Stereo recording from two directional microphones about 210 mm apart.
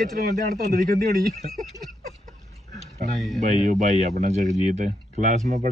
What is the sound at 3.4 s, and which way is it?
Speech, 35° right (ahead or behind).